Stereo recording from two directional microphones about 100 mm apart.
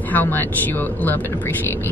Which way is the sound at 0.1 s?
20° left (ahead or behind).